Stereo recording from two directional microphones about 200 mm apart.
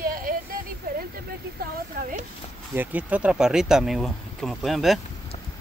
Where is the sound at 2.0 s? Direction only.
45° right (ahead or behind).